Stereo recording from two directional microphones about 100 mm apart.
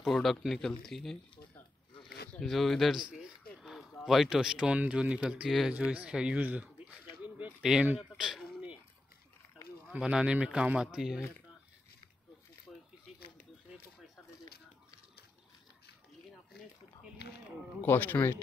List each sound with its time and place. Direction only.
0.0 s speech: centre (ahead or behind)
2.4 s speech: centre (ahead or behind)
3.1 s a sound: 5° right (ahead or behind)
4.0 s speech: 5° right (ahead or behind)
7.2 s a sound: 15° right (ahead or behind)
9.9 s speech: 10° right (ahead or behind)
17.8 s speech: 20° left (ahead or behind)